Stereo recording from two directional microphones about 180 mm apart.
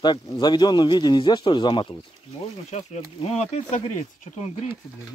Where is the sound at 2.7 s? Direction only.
40° left (ahead or behind).